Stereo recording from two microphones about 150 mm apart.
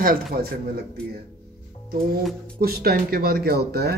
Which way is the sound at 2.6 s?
90° right.